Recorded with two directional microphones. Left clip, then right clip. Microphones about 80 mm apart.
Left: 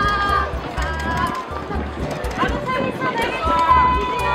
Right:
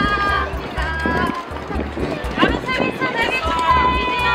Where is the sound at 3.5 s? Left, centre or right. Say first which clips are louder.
Left 3 dB; right.